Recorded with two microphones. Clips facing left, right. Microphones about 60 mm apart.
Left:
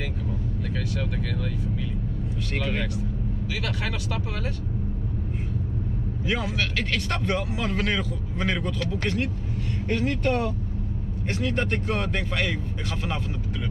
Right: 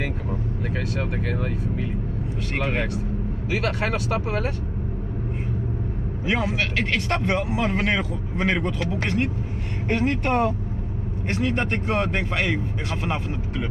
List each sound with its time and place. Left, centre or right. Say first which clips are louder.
0.7 s speech: right 3 dB; right
6.2 s speech: right 4 dB; right